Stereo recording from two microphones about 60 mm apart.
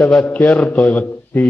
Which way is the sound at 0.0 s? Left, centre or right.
Centre.